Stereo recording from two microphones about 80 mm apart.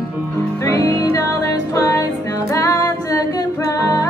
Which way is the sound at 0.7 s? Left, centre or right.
Left.